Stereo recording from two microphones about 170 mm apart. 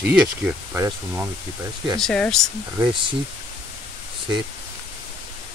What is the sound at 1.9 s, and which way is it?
Speech, 5° left (ahead or behind).